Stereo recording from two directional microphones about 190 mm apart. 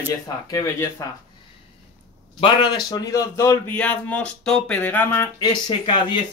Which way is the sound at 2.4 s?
25° left (ahead or behind).